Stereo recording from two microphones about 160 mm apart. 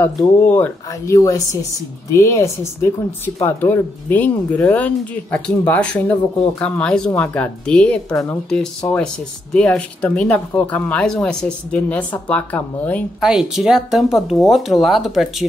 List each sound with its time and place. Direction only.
0.0 s speech: 10° left (ahead or behind)
13.2 s speech: 5° right (ahead or behind)